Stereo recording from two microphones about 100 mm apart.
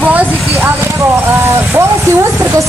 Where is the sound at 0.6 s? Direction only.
25° right (ahead or behind).